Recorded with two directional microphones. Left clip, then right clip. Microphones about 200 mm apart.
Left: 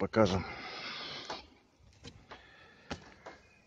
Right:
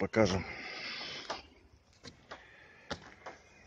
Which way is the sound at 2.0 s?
30° left (ahead or behind).